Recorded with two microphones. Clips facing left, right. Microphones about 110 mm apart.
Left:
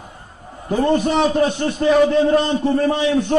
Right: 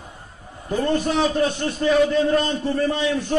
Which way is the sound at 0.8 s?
50° left (ahead or behind).